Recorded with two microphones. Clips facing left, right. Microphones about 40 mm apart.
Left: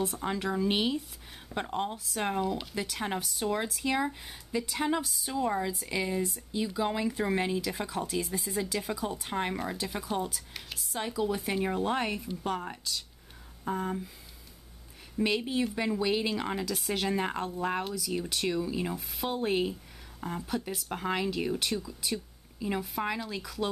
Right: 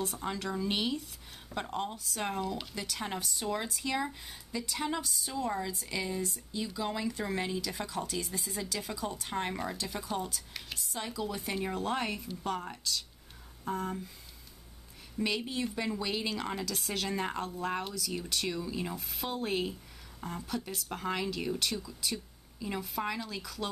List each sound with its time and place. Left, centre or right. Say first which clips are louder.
0.0 s speech: left 4 dB; centre
15.1 s speech: left 4 dB; centre